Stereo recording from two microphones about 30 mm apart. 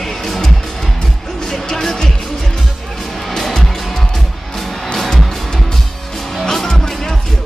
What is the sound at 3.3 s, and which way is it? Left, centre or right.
Music, centre.